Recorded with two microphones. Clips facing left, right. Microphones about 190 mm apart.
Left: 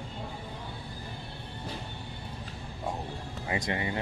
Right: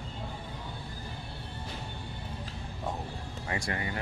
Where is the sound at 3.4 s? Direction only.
20° left (ahead or behind).